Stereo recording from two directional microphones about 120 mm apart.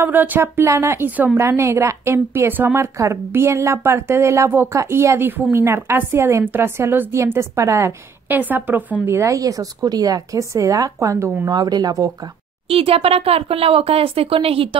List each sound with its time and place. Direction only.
0.0 s a woman's voice: 15° right (ahead or behind)
12.6 s speech: 50° right (ahead or behind)